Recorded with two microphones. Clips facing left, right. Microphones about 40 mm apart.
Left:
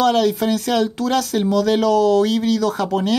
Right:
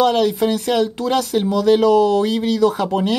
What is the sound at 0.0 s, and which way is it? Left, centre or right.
Speech, centre.